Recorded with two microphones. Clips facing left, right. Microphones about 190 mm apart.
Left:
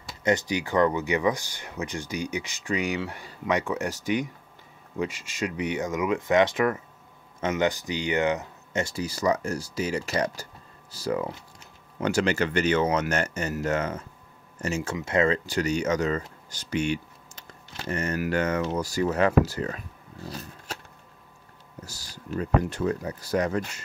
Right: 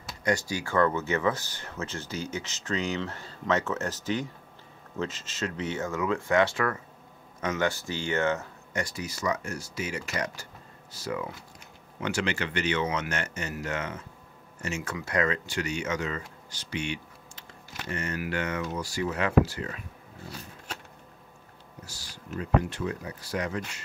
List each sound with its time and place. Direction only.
0.2 s speech: 20° left (ahead or behind); by 14.0 s 40° left (ahead or behind)
14.9 s speech: 25° left (ahead or behind); by 19.8 s 40° left (ahead or behind)
21.8 s speech: 40° left (ahead or behind)